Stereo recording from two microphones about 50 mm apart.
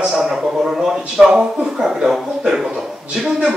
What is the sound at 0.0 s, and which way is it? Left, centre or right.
A man's voice, centre.